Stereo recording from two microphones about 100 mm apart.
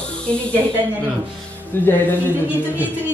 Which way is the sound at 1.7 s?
20° left (ahead or behind).